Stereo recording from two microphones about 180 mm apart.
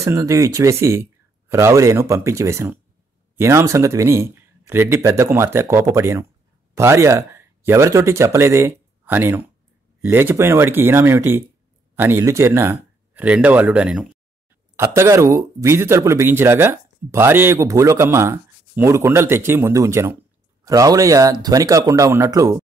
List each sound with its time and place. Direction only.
0.0 s speech: 15° right (ahead or behind)
14.8 s speech: 15° right (ahead or behind)